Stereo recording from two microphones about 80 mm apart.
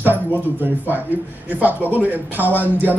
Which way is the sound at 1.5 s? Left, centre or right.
Right.